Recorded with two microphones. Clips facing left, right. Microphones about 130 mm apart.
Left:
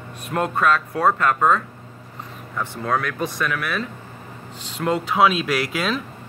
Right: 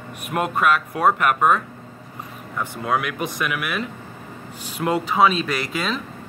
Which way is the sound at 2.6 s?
10° right (ahead or behind).